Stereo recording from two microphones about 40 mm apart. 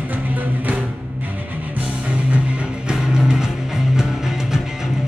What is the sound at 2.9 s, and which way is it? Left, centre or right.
Music, centre.